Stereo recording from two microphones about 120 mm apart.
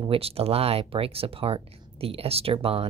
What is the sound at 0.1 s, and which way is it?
Speech, 55° right (ahead or behind).